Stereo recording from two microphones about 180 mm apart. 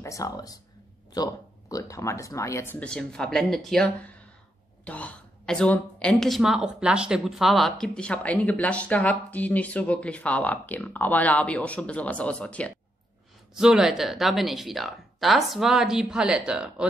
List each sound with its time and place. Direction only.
0.0 s speech: 20° left (ahead or behind); by 16.8 s 5° right (ahead or behind)